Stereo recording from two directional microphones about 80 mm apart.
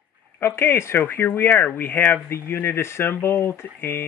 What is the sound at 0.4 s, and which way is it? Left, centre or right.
Speech, left.